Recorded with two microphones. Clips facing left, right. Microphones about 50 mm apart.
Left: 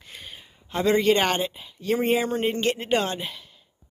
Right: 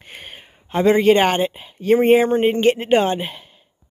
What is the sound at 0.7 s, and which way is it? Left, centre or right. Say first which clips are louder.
Speech: right 6 dB; right.